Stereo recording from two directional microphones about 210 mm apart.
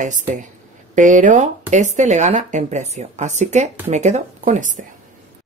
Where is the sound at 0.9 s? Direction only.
35° right (ahead or behind).